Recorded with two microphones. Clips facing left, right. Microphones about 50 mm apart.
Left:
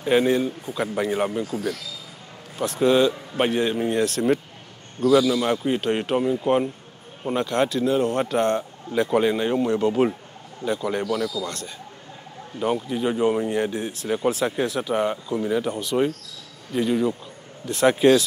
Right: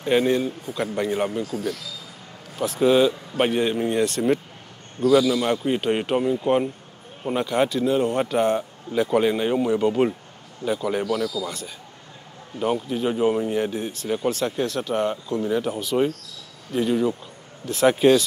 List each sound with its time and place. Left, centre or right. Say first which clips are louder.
0.0 s speech: left 1 dB; centre